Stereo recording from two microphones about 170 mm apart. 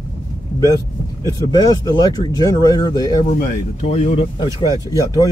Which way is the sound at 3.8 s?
35° left (ahead or behind).